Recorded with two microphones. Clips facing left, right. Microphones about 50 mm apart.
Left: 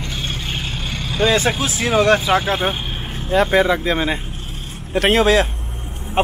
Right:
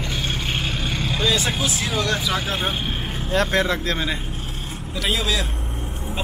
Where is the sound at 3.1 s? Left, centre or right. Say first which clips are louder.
Left 6 dB; centre.